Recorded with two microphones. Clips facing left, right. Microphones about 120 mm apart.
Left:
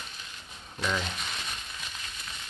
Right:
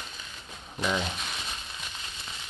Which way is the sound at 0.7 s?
15° right (ahead or behind).